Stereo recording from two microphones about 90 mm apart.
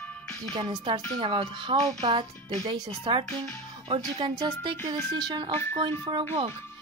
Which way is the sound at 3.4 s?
90° right.